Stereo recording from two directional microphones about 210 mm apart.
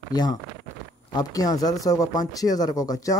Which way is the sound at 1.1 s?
20° left (ahead or behind).